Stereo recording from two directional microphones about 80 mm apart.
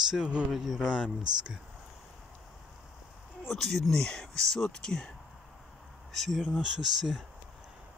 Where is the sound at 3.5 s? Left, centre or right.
Centre.